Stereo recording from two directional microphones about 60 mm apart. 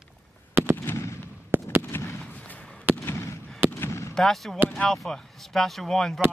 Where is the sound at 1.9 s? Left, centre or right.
Left.